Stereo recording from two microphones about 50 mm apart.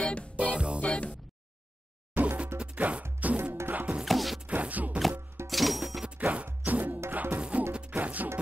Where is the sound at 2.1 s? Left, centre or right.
Right.